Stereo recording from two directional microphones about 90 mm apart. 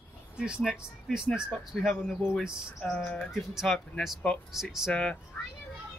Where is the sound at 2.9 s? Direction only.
15° left (ahead or behind).